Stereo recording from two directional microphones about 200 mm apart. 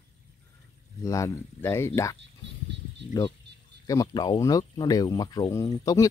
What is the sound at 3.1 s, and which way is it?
Speech, 20° left (ahead or behind).